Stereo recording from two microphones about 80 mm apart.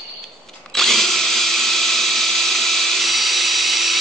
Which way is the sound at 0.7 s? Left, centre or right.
Centre.